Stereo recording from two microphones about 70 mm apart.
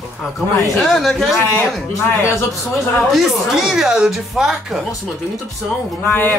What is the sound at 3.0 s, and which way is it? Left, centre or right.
Speech, centre.